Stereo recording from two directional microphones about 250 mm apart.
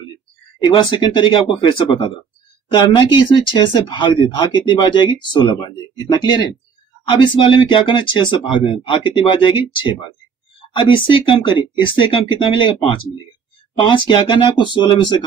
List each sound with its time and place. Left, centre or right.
0.6 s speech: centre